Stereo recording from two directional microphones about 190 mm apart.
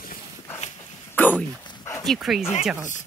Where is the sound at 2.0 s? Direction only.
Centre (ahead or behind).